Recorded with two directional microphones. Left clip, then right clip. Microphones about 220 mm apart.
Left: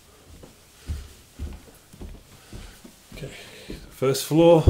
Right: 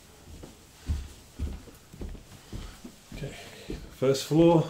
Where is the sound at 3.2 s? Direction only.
15° left (ahead or behind).